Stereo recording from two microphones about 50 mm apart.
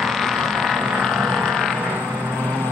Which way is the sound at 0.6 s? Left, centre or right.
Centre.